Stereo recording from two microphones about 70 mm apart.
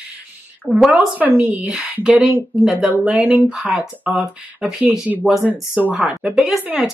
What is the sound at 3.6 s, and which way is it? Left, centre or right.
Speech, centre.